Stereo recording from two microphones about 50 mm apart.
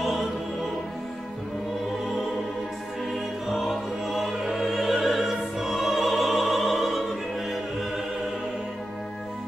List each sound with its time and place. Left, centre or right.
0.0 s music: centre
3.1 s music: centre